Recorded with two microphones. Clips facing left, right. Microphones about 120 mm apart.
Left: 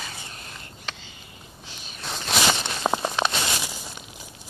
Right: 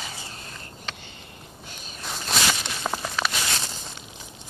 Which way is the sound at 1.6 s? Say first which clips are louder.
Right 1 dB; 50° right (ahead or behind).